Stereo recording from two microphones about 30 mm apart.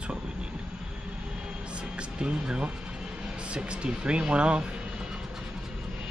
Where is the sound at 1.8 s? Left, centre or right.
Right.